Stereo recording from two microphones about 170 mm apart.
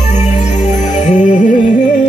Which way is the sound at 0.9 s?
45° left (ahead or behind).